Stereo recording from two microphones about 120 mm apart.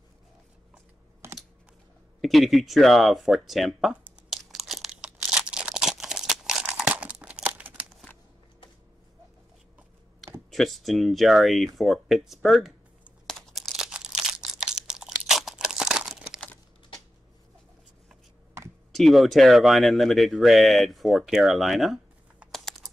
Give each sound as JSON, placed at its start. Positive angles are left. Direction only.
{"t": 1.2, "sound": "computer keyboard", "side_deg": -20}
{"t": 2.2, "sound": "speech", "side_deg": 0}
{"t": 4.3, "sound": "crumpling", "side_deg": 0}
{"t": 10.5, "sound": "speech", "side_deg": 0}
{"t": 13.3, "sound": "crumpling", "side_deg": 0}
{"t": 18.9, "sound": "speech", "side_deg": 0}